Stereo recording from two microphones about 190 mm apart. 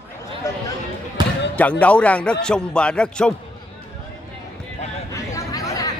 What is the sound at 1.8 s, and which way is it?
A man's voice, 5° left (ahead or behind).